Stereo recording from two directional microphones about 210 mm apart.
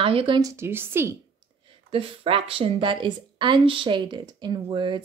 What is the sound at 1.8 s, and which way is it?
Speech, 25° right (ahead or behind).